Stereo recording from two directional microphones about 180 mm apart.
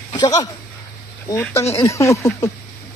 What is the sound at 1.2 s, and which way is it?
Speech, 10° left (ahead or behind).